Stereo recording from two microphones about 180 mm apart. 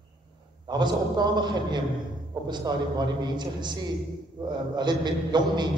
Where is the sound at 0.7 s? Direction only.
25° right (ahead or behind).